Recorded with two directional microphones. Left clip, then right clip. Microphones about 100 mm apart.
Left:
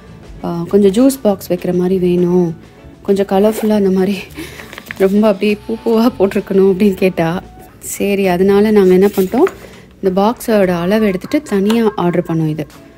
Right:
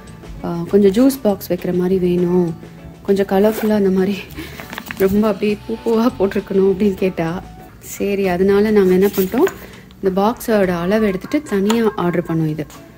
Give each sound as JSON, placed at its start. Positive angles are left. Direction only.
{"t": 0.4, "sound": "a woman's voice", "side_deg": 20}